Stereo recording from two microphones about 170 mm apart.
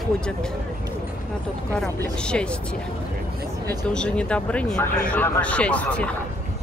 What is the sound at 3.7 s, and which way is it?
Speech, 5° left (ahead or behind).